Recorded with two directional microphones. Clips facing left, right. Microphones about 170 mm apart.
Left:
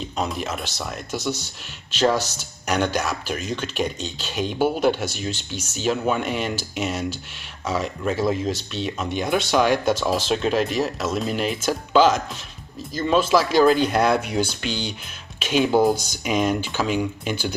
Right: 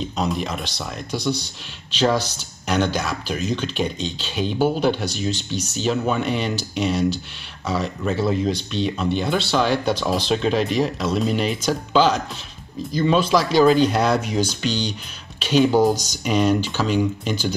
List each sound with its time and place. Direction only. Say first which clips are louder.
0.0 s speech: right 3 dB; 5° left (ahead or behind)
0.7 s speech: right 1 dB; 10° right (ahead or behind)
1.9 s speech: even; 10° left (ahead or behind)
13.3 s speech: right 1 dB; 5° left (ahead or behind)
14.4 s speech: right 3 dB; 55° left (ahead or behind)
15.3 s speech: right 2 dB; 10° left (ahead or behind)